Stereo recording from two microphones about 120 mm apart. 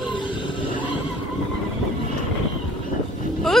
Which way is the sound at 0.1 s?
45° left (ahead or behind).